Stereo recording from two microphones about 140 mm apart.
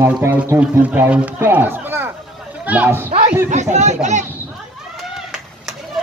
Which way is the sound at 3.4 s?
55° right (ahead or behind).